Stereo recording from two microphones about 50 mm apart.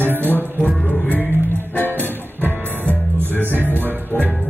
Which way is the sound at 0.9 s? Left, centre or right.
Left.